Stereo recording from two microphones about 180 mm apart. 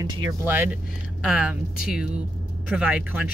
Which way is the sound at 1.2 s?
5° right (ahead or behind).